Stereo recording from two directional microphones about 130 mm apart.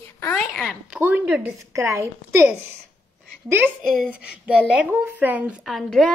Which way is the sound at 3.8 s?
5° right (ahead or behind).